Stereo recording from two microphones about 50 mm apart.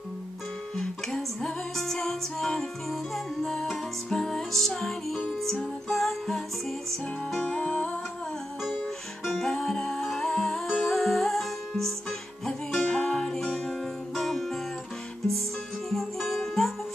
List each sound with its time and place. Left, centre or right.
0.7 s music: centre
7.4 s music: centre
9.2 s music: centre
15.9 s music: centre